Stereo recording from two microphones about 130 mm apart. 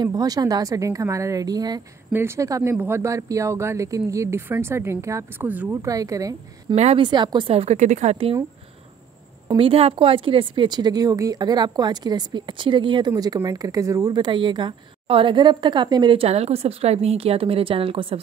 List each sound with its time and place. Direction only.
0.0 s speech: 30° right (ahead or behind)
2.1 s speech: 20° right (ahead or behind)
6.7 s a woman's voice: 60° right (ahead or behind)
7.0 s a woman's voice: 35° right (ahead or behind); by 8.4 s 50° right (ahead or behind)
9.6 s speech: 45° right (ahead or behind); by 14.1 s 25° right (ahead or behind)
14.1 s a woman's voice: 35° right (ahead or behind)